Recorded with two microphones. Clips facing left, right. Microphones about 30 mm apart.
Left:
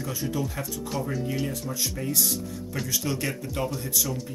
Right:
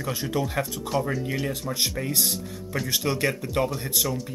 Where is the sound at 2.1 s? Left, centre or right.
Right.